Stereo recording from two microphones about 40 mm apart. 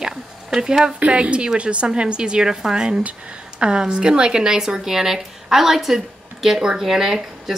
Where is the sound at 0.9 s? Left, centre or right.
Right.